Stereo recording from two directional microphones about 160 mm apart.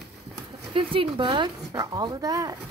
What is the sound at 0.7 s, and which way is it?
Speech, 30° right (ahead or behind).